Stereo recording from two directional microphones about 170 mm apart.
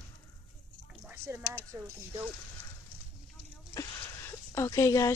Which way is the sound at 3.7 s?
25° left (ahead or behind).